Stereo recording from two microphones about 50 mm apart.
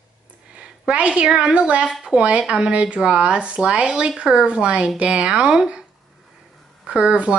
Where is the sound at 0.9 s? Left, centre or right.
Right.